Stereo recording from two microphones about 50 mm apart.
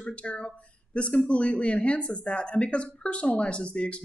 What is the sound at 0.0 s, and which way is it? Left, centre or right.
Speech, left.